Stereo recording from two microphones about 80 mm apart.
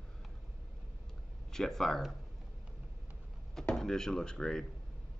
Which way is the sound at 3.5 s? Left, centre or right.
Centre.